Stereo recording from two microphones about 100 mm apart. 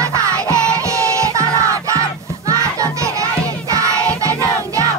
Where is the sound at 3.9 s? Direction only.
15° left (ahead or behind).